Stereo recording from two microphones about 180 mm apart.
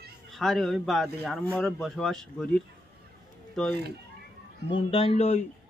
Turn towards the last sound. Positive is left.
turn(degrees=35)  # may be behind; listen again after turning